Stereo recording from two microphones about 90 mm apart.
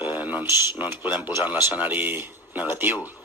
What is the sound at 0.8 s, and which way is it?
Speech, 20° right (ahead or behind).